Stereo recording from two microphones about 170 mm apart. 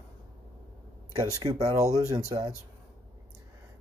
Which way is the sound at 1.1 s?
20° right (ahead or behind).